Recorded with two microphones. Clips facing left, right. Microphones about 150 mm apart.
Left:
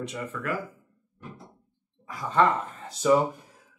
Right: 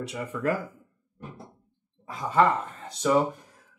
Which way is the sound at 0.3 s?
20° right (ahead or behind).